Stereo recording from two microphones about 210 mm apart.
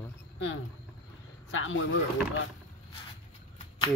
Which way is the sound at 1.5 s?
70° left (ahead or behind).